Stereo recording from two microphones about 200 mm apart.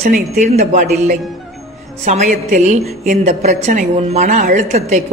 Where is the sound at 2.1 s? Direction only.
35° right (ahead or behind).